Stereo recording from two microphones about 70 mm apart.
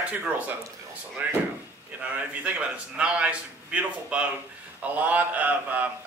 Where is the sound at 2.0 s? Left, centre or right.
Centre.